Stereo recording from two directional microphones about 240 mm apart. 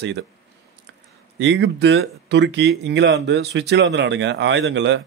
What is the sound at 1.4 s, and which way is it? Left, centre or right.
Speech, right.